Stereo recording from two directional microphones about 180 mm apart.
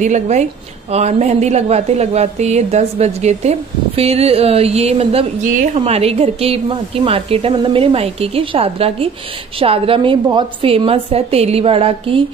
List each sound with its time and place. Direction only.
0.0 s a woman's voice: 40° right (ahead or behind)